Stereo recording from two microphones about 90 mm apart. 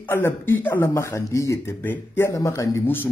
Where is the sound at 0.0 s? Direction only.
25° left (ahead or behind).